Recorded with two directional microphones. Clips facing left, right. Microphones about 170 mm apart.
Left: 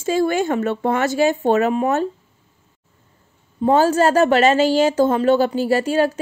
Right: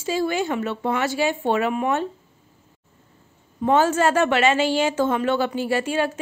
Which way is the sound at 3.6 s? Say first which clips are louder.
Left 3 dB; 35° left (ahead or behind).